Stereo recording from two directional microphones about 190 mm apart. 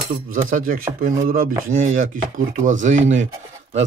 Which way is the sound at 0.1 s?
45° right (ahead or behind).